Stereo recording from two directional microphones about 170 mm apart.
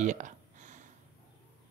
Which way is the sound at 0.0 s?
45° right (ahead or behind).